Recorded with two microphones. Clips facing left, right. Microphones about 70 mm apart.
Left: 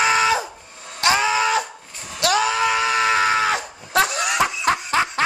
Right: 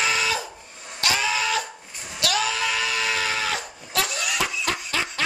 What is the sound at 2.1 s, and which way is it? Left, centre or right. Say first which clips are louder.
Screaming: left 6 dB; left.